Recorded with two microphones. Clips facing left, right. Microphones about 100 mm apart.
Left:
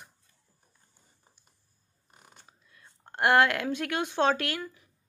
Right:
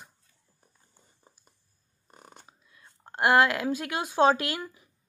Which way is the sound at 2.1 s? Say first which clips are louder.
Right 6 dB; 40° right (ahead or behind).